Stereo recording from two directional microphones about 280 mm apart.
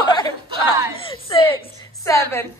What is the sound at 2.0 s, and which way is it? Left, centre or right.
Speech, centre.